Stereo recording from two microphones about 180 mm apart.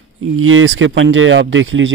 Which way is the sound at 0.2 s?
90° right.